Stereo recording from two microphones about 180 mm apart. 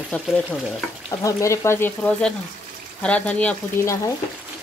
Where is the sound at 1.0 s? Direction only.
15° left (ahead or behind).